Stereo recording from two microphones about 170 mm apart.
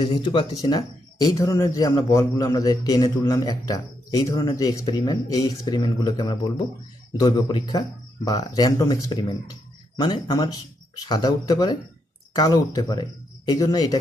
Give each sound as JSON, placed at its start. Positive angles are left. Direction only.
{"t": 0.0, "sound": "speech", "side_deg": 30}